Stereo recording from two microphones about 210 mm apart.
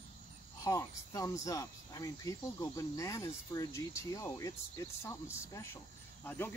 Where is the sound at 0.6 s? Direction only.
15° left (ahead or behind).